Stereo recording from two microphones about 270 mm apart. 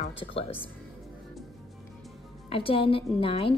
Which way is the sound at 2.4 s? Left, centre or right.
Centre.